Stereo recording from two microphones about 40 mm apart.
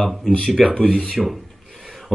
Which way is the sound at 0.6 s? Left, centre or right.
Centre.